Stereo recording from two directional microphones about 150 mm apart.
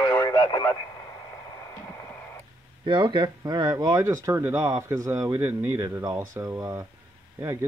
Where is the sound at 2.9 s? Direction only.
30° right (ahead or behind).